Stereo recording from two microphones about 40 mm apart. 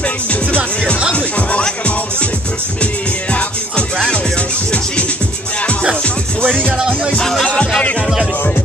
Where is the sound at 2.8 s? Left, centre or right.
Left.